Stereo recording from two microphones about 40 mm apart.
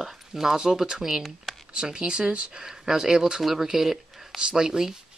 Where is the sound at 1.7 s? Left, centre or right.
Centre.